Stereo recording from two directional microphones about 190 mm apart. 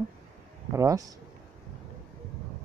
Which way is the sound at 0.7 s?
15° right (ahead or behind).